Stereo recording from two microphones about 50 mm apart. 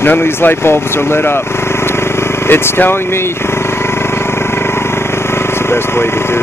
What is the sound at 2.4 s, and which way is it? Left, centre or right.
Speech, left.